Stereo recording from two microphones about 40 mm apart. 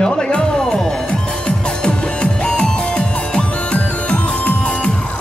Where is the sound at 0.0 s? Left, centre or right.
Centre.